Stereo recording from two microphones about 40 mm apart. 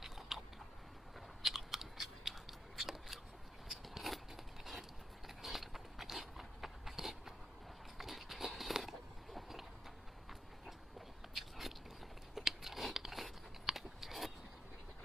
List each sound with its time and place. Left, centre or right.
0.3 s biting: centre
1.4 s scissors: centre
3.6 s a sound: centre
8.7 s biting: centre
11.3 s biting: centre